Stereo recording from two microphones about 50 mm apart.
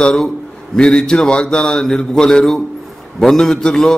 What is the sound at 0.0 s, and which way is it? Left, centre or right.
A man's voice, centre.